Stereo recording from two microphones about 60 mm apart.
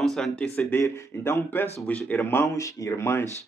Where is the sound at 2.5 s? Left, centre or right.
Left.